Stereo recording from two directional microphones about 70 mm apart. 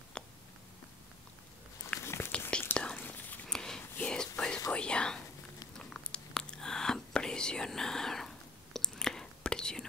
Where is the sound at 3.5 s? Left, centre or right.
Centre.